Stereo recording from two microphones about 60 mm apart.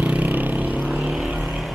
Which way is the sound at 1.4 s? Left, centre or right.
Centre.